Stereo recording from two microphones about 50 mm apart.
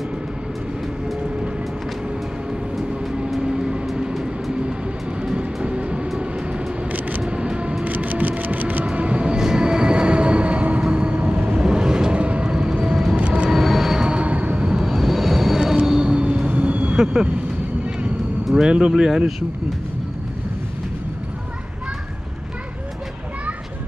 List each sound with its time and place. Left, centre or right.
3.3 s vehicle: centre
5.2 s train: right
6.9 s single-lens reflex camera: right
7.8 s train: right
10.9 s vehicle: right
13.2 s a sound: right
13.5 s train: centre; by 14.7 s right
14.7 s vehicle: centre; by 16.9 s right
16.9 s vehicle: centre
18.7 s speech: centre